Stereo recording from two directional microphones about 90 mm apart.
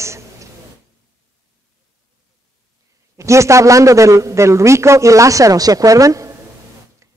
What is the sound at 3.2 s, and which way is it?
A man's voice, 35° right (ahead or behind).